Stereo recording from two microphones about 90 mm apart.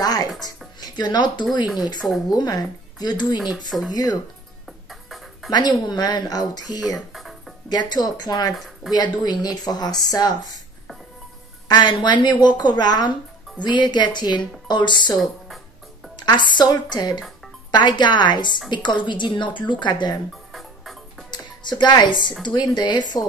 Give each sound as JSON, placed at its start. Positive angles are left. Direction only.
{"t": 0.0, "sound": "music", "side_deg": 45}
{"t": 0.7, "sound": "speech", "side_deg": 50}
{"t": 2.0, "sound": "speech", "side_deg": 0}
{"t": 2.2, "sound": "a woman's voice", "side_deg": 50}
{"t": 4.8, "sound": "music", "side_deg": 0}
{"t": 5.5, "sound": "a woman's voice", "side_deg": 50}
{"t": 7.1, "sound": "music", "side_deg": 0}
{"t": 7.7, "sound": "a woman's voice", "side_deg": 45}
{"t": 11.6, "sound": "a woman's voice", "side_deg": 55}
{"t": 16.2, "sound": "a woman's voice", "side_deg": 55}
{"t": 20.5, "sound": "music", "side_deg": 0}
{"t": 21.3, "sound": "music", "side_deg": 55}
{"t": 22.4, "sound": "speech", "side_deg": 55}